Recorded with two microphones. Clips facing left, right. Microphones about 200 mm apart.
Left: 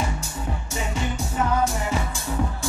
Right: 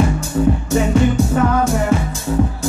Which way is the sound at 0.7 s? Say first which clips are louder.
Right 13 dB; 60° right (ahead or behind).